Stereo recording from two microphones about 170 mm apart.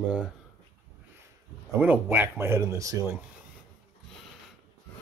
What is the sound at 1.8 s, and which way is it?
Speech, 10° right (ahead or behind).